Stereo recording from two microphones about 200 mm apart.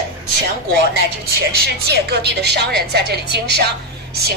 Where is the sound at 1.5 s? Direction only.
55° right (ahead or behind).